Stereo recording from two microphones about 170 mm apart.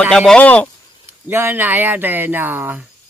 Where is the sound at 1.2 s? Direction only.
10° right (ahead or behind).